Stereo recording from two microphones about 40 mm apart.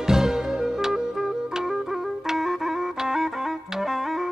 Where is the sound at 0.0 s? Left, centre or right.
Centre.